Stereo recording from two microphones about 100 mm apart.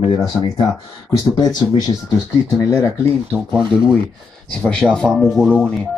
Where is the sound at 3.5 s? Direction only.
55° right (ahead or behind).